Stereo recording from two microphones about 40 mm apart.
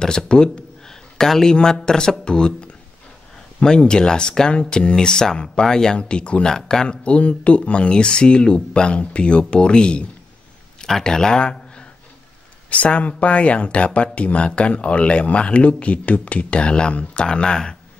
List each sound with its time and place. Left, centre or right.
0.0 s speech: centre
6.5 s speech: centre
6.9 s speech: left
10.8 s speech: centre
12.6 s speech: left